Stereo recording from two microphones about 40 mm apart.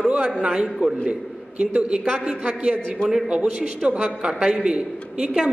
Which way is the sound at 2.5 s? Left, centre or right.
Right.